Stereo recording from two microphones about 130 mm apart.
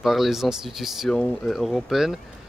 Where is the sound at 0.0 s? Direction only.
Centre (ahead or behind).